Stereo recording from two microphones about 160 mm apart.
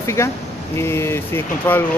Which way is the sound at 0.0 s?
20° left (ahead or behind).